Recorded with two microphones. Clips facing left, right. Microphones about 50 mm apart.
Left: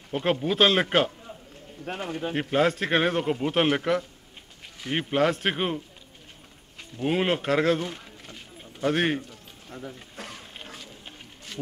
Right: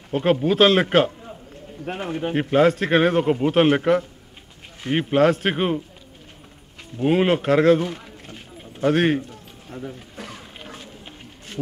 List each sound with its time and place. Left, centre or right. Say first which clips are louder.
0.1 s a man's voice: right 6 dB; centre
1.9 s speech: right 5 dB; right
2.3 s a man's voice: right 6 dB; centre
7.0 s a man's voice: right 6 dB; centre